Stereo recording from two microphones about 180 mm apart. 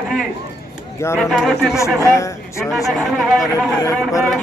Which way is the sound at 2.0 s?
15° left (ahead or behind).